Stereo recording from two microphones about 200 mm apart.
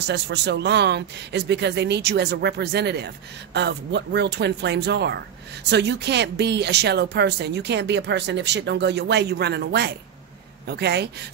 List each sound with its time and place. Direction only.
0.0 s speech: 60° right (ahead or behind)